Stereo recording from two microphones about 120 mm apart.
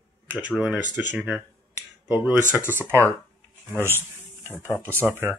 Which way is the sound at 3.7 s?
20° left (ahead or behind).